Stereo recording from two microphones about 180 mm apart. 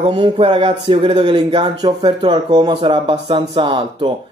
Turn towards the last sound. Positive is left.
turn(degrees=-25)  # may be behind; listen again after turning